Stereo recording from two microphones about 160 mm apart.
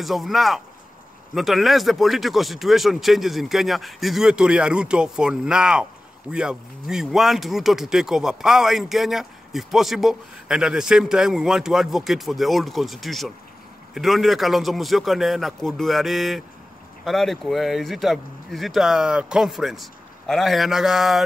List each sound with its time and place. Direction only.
0.0 s speech: centre (ahead or behind)